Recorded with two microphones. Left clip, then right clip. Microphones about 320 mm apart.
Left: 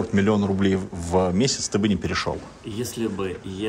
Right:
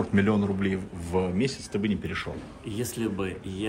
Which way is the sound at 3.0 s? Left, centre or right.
Centre.